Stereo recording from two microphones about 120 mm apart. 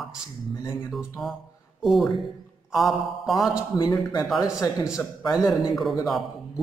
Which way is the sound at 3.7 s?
35° left (ahead or behind).